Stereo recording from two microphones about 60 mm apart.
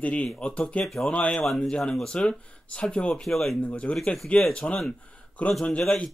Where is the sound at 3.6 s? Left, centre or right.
Left.